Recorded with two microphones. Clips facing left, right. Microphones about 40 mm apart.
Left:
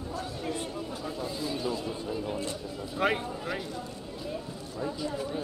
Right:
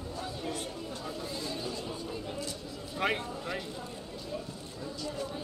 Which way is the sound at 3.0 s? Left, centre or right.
Centre.